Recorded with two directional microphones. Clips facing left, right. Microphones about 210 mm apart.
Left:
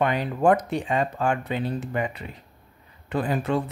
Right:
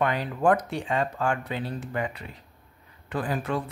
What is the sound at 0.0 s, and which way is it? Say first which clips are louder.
Speech: left 3 dB; 20° left (ahead or behind).